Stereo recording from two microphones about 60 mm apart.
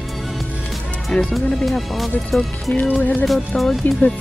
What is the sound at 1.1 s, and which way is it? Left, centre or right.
Speech, centre.